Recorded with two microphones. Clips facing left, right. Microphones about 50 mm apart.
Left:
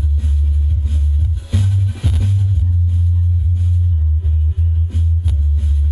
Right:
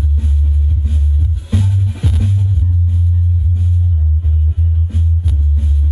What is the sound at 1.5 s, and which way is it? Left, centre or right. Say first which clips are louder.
Music: right 3 dB; centre.